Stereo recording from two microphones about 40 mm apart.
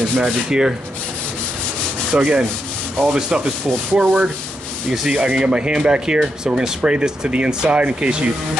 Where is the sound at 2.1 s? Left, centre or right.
Right.